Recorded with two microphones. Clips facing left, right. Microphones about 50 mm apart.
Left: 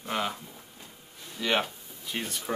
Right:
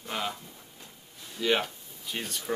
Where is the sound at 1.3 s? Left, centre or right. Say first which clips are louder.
Right 2 dB; centre.